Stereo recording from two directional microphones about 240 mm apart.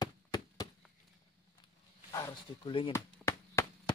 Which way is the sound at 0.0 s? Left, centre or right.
Centre.